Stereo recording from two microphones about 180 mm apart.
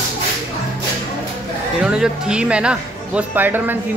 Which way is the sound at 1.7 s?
5° right (ahead or behind).